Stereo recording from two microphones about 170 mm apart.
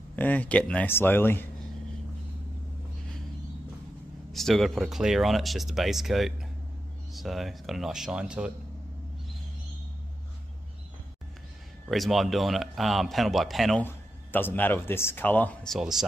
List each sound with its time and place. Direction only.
0.1 s speech: 10° left (ahead or behind)
4.3 s speech: centre (ahead or behind)
11.9 s speech: centre (ahead or behind)
13.8 s speech: 10° left (ahead or behind)